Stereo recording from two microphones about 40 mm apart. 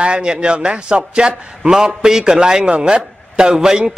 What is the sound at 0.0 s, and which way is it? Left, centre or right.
A man's voice, right.